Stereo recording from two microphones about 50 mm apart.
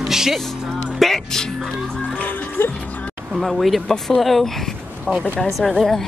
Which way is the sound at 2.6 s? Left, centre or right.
Left.